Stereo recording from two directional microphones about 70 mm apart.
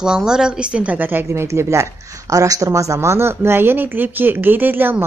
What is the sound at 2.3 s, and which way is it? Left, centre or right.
Speech, right.